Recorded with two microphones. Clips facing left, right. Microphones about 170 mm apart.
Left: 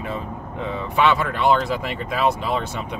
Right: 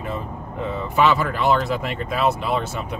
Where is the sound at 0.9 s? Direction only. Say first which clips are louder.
Right 1 dB; centre (ahead or behind).